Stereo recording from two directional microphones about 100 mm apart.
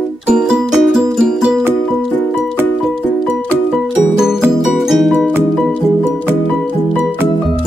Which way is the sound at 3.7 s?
5° right (ahead or behind).